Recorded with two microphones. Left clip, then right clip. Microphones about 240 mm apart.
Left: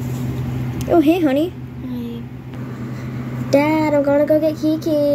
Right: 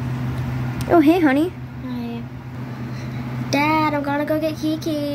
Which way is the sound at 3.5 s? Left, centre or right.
Right.